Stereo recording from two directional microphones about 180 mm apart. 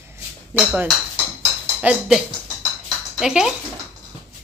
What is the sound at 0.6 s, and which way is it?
A woman's voice, 5° right (ahead or behind).